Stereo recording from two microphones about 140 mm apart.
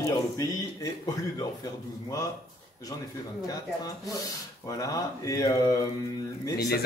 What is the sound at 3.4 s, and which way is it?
Speech, 25° left (ahead or behind).